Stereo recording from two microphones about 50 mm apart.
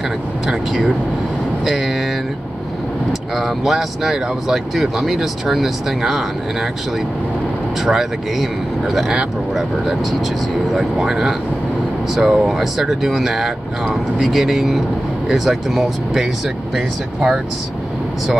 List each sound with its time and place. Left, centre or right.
0.5 s speech: centre
3.1 s speech: centre
7.8 s speech: centre
10.5 s speech: centre
16.7 s speech: centre